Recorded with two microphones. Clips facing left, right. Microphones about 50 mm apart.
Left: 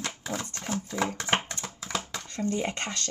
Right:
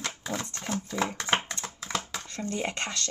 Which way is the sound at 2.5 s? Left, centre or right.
Right.